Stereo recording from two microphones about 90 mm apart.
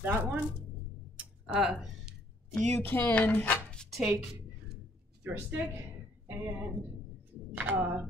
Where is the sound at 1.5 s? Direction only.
5° right (ahead or behind).